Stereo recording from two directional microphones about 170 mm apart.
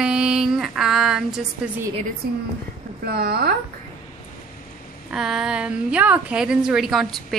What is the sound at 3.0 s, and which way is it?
Speech, 65° right (ahead or behind).